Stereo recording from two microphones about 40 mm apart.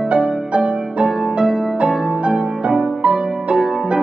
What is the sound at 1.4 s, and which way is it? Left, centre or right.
Music, right.